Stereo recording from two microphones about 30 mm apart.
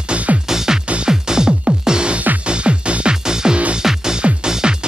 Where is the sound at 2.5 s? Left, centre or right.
Right.